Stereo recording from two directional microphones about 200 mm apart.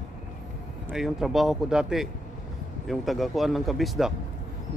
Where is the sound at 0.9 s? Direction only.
Centre (ahead or behind).